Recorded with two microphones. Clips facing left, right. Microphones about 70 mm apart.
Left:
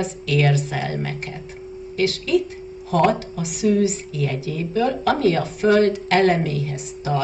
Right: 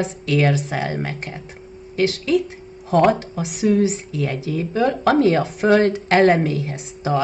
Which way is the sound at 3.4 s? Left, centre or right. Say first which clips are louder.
Right 1 dB; right.